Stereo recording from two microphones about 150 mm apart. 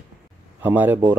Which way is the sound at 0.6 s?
10° right (ahead or behind).